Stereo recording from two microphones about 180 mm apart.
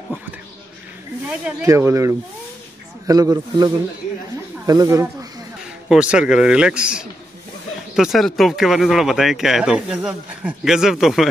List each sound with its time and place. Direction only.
1.2 s speech: 10° right (ahead or behind)
5.9 s speech: 5° right (ahead or behind)